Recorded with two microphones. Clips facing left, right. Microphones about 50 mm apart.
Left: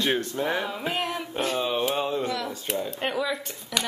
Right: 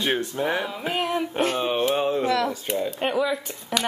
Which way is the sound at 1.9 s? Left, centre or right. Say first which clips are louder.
Right 4 dB; right.